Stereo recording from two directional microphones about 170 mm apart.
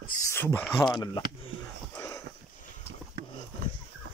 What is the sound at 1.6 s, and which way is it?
Wheeze, 20° left (ahead or behind).